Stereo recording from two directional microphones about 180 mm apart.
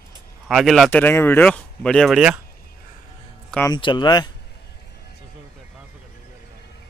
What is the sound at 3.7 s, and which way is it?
Speech, 25° left (ahead or behind).